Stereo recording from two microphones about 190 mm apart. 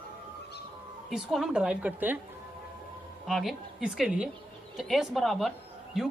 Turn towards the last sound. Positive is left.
turn(degrees=0)  # may be behind; listen again after turning